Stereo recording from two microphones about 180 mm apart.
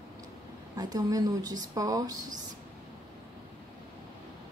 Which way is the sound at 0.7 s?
20° right (ahead or behind).